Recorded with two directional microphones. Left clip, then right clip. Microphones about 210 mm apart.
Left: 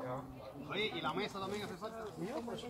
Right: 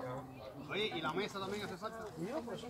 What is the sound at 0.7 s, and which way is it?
Speech, 20° right (ahead or behind).